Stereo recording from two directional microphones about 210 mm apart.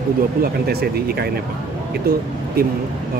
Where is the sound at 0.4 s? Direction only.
50° right (ahead or behind).